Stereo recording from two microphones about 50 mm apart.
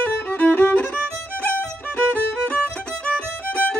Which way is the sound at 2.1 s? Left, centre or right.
Left.